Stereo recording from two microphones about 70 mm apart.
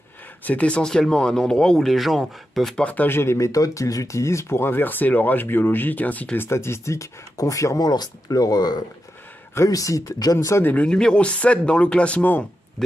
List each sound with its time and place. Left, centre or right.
0.4 s speech: left; by 2.8 s centre
2.8 s speech: left
3.1 s speech: left
3.3 s speech: left
6.3 s speech: left
9.7 s speech: left
10.6 s speech: left